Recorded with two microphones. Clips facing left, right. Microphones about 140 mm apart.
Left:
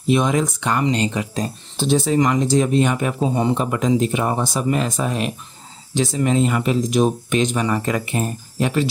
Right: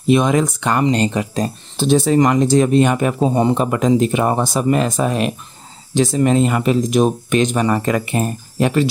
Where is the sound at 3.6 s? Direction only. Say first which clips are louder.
Right 4 dB; 60° right (ahead or behind).